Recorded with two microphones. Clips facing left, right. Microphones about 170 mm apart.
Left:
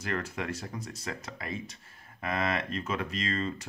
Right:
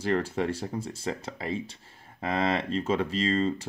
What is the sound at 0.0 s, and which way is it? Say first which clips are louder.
Speech: right 7 dB; 30° right (ahead or behind).